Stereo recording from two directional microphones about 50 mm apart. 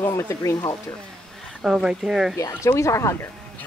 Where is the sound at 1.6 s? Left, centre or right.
Centre.